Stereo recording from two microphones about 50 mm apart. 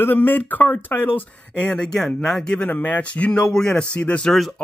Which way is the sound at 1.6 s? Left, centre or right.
Left.